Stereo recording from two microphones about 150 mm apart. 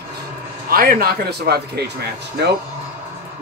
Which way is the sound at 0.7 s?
80° right.